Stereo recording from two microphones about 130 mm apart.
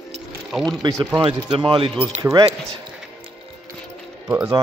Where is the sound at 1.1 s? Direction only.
35° right (ahead or behind).